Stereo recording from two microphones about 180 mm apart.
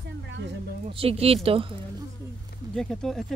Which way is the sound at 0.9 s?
30° right (ahead or behind).